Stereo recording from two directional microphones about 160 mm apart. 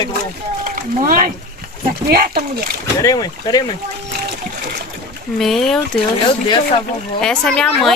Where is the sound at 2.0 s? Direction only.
75° right (ahead or behind).